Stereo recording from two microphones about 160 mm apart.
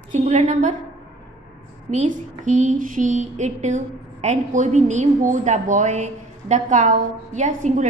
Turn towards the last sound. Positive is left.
turn(degrees=-50)  # may be behind; listen again after turning